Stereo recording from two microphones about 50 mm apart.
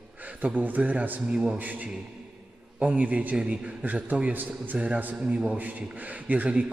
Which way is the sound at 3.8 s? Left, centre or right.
Right.